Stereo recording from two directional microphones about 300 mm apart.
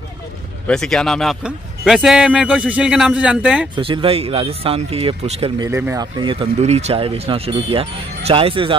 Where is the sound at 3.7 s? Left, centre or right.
Centre.